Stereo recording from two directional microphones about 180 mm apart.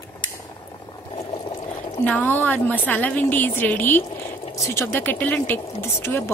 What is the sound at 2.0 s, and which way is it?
A woman's voice, 10° left (ahead or behind).